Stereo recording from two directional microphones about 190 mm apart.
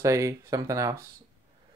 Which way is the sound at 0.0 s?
15° right (ahead or behind).